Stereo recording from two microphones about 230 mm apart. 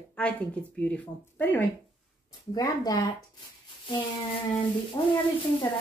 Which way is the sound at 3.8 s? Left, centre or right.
Left.